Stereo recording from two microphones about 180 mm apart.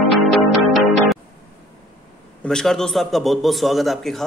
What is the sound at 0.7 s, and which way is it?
Music, centre (ahead or behind).